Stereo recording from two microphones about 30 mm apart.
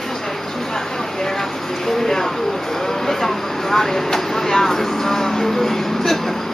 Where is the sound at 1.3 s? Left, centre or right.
Centre.